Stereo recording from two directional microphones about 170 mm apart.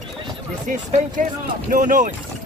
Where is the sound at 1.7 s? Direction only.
50° right (ahead or behind).